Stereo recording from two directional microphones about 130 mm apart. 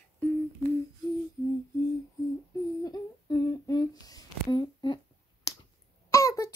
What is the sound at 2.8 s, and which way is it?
Humming, 30° left (ahead or behind).